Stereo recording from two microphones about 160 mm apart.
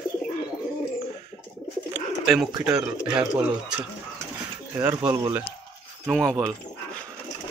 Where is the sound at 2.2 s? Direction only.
Centre (ahead or behind).